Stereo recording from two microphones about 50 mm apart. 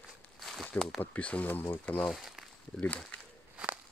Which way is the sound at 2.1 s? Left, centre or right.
Centre.